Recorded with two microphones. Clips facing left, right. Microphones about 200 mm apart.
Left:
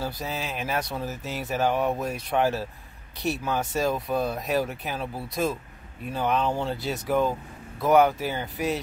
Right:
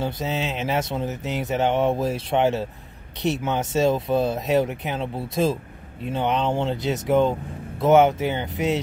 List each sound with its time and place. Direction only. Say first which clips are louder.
0.0 s speech: right 5 dB; 25° right (ahead or behind)